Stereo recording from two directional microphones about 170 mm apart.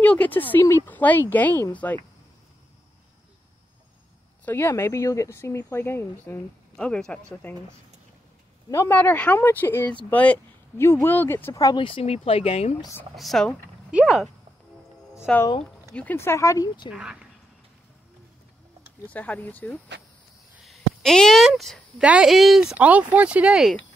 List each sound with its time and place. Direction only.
0.0 s speech: 10° left (ahead or behind)
4.5 s a woman's voice: 15° left (ahead or behind)
8.6 s speech: 15° left (ahead or behind); by 12.7 s 35° left (ahead or behind)
13.1 s a woman's voice: centre (ahead or behind)
15.1 s speech: 15° left (ahead or behind)
16.9 s a woman's voice: 5° right (ahead or behind)
19.1 s a woman's voice: 10° left (ahead or behind)